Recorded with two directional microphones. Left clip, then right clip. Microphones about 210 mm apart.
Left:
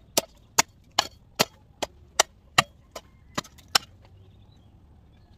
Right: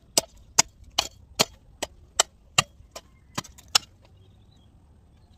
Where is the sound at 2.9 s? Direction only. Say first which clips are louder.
Left 2 dB; centre (ahead or behind).